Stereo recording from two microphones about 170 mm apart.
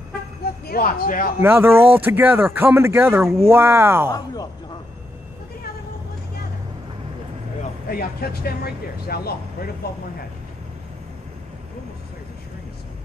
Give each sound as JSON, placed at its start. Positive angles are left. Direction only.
{"t": 0.7, "sound": "speech", "side_deg": 60}
{"t": 1.4, "sound": "speech", "side_deg": -15}
{"t": 7.9, "sound": "speech", "side_deg": 65}